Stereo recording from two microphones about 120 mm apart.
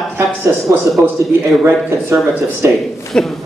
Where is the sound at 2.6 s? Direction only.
20° right (ahead or behind).